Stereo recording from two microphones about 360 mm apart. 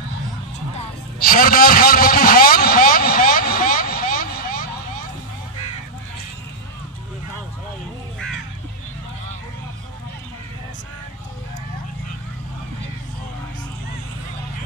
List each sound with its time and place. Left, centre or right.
0.7 s vehicle: left